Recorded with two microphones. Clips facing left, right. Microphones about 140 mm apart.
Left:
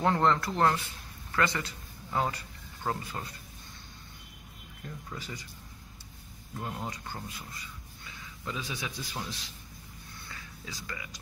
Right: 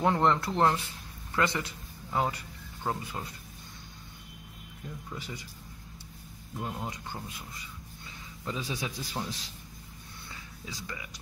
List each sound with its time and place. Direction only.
0.0 s speech: 15° right (ahead or behind)
2.0 s a man's voice: 5° right (ahead or behind)
4.8 s speech: 15° right (ahead or behind)
6.6 s speech: 5° right (ahead or behind)
8.5 s a man's voice: 30° right (ahead or behind)
10.2 s a sound: 20° right (ahead or behind)